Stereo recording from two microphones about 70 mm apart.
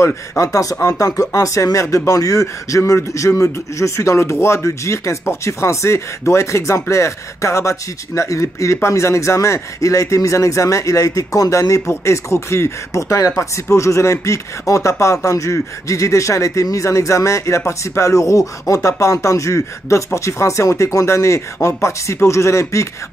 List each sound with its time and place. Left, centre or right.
0.0 s speech: left